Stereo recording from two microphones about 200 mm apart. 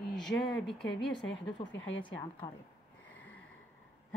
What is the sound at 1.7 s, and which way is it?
Speech, 70° left (ahead or behind).